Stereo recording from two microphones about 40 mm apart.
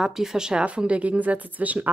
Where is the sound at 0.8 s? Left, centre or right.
Right.